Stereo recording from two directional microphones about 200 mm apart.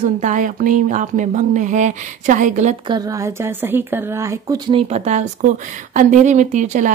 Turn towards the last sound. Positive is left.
turn(degrees=-40)  # may be behind; listen again after turning